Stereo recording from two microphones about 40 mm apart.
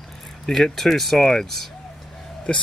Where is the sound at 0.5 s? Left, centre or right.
Centre.